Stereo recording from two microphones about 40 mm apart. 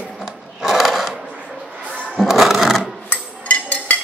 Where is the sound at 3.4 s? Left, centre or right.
Left.